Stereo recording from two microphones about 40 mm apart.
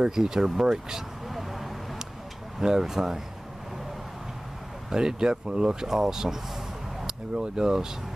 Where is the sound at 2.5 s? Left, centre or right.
Centre.